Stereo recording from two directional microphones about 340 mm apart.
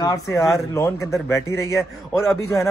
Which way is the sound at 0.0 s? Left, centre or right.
Centre.